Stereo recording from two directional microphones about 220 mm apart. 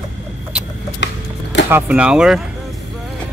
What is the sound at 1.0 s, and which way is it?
Music, 55° left (ahead or behind).